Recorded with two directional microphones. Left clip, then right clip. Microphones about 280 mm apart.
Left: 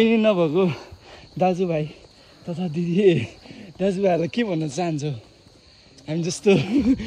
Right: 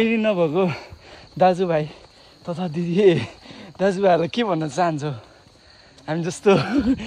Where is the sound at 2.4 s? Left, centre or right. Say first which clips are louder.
Right 2 dB; centre.